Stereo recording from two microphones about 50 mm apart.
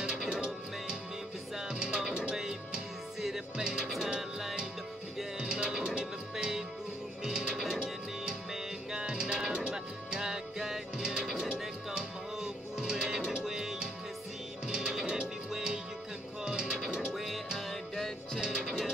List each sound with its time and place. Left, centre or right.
0.3 s music: centre
5.4 s music: centre
8.9 s music: centre
17.1 s music: centre